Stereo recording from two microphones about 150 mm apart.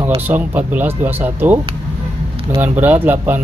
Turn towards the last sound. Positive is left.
turn(degrees=-15)  # may be behind; listen again after turning